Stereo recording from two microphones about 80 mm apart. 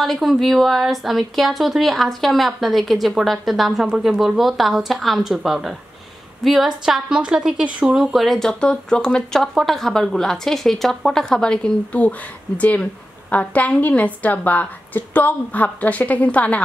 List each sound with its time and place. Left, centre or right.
0.0 s speech: centre
3.8 s a woman's voice: centre